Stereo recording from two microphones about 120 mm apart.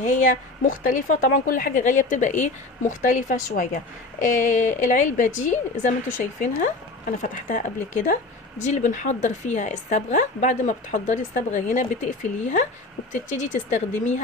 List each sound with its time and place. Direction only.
0.0 s a woman's voice: 90° left